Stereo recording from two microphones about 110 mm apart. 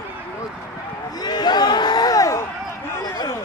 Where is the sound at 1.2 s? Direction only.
40° left (ahead or behind).